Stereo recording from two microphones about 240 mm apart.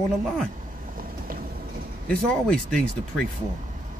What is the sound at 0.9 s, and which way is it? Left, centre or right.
Vehicle, right.